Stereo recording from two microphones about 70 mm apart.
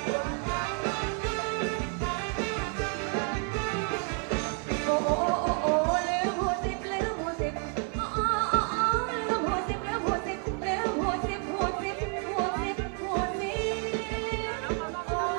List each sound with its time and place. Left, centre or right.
0.1 s music: centre
8.2 s music: centre
10.7 s music: centre